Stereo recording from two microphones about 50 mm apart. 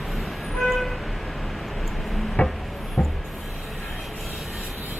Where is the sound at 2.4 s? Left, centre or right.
Centre.